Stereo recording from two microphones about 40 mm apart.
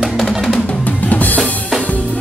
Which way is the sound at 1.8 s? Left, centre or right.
Left.